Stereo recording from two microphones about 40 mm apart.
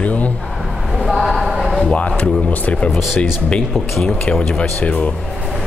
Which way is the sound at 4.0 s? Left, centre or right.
Left.